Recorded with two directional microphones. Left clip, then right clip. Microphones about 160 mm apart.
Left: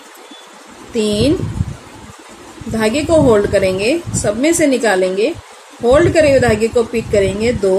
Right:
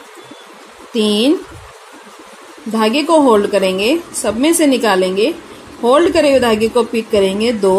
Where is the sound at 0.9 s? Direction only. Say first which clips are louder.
Right 1 dB; 35° right (ahead or behind).